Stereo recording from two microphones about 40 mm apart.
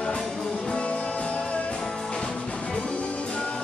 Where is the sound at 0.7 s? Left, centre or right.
Left.